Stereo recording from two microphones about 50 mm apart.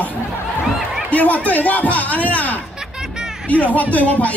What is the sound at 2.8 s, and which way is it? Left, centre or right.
Music, centre.